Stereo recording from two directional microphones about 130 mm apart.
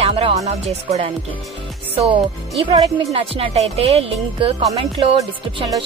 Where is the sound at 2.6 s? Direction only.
35° right (ahead or behind).